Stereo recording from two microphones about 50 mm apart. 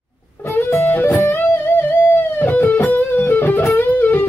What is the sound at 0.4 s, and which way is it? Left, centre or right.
Music, left.